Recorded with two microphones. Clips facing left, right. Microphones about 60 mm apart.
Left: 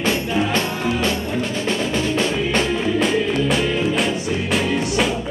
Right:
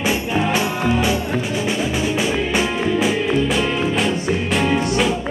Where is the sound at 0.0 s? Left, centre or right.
Centre.